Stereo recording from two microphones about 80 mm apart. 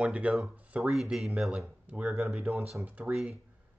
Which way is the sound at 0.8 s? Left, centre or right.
Centre.